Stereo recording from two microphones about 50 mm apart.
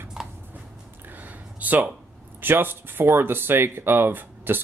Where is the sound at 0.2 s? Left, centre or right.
Centre.